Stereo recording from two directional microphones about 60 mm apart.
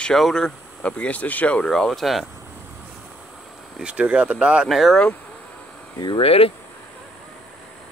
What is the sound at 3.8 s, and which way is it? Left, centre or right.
Speech, centre.